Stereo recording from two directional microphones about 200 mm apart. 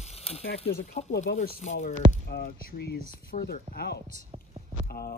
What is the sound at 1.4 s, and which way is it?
Speech, 35° left (ahead or behind).